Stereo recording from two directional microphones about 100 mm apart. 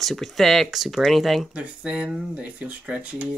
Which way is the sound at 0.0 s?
Centre (ahead or behind).